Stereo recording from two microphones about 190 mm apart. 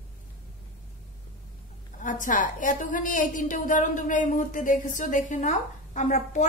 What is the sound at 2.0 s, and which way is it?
A woman's voice, 45° left (ahead or behind).